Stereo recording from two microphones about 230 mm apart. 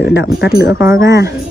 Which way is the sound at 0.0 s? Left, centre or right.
Left.